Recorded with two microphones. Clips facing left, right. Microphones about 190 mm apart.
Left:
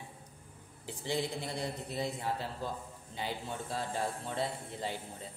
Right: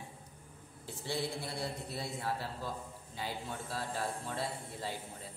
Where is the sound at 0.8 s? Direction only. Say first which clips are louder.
Left 2 dB; 15° left (ahead or behind).